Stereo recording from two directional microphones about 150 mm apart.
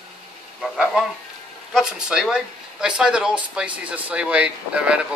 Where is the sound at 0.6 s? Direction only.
Centre (ahead or behind).